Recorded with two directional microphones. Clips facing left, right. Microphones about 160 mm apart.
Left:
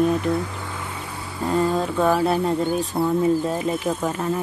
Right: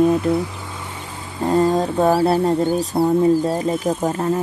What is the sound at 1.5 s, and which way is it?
Speech, 40° right (ahead or behind).